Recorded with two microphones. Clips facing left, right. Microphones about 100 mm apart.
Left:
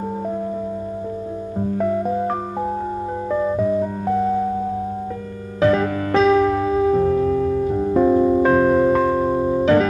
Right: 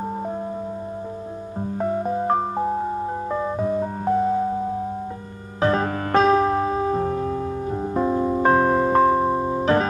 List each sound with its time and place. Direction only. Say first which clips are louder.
1.8 s music: left 2 dB; 30° right (ahead or behind)
5.6 s music: left 4 dB; 35° right (ahead or behind); by 8.3 s 15° right (ahead or behind)
8.4 s music: left 3 dB; 30° right (ahead or behind)